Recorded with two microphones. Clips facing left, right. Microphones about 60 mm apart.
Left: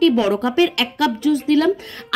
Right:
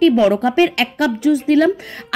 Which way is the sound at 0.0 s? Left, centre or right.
Right.